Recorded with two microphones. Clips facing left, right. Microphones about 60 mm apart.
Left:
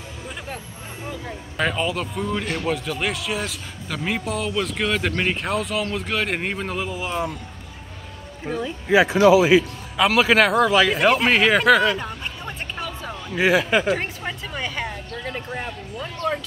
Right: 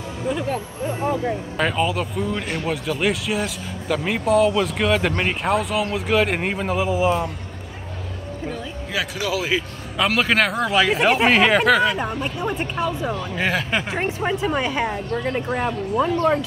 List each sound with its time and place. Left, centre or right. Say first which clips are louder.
0.3 s speech: right 11 dB; centre
1.6 s speech: right 1 dB; centre
8.5 s speech: left 5 dB; centre
8.8 s a man's voice: left 12 dB; left
9.9 s speech: left 2 dB; centre
12.2 s speech: right 8 dB; centre
13.1 s speech: left 3 dB; centre
13.8 s speech: right 1 dB; centre